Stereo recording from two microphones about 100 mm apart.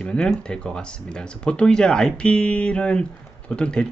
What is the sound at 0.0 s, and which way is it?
Speech, 10° left (ahead or behind).